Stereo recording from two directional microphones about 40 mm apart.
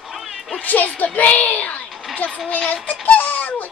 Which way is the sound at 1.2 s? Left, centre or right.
Left.